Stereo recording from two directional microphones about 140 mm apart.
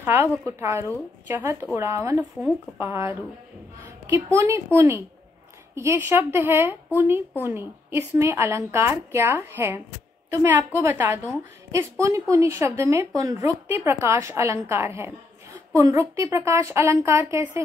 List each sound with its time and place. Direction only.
0.0 s a woman's voice: 15° right (ahead or behind)